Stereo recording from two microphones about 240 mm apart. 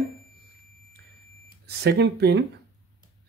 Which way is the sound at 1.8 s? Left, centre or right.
Right.